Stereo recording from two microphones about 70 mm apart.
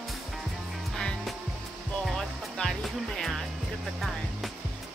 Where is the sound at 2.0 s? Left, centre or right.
Centre.